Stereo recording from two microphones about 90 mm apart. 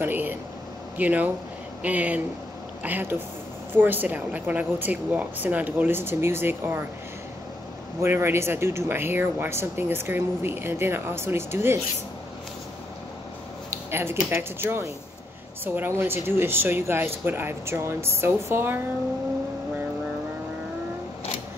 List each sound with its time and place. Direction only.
0.0 s speech: 20° right (ahead or behind)
8.0 s speech: 30° right (ahead or behind)
13.7 s speech: 30° right (ahead or behind)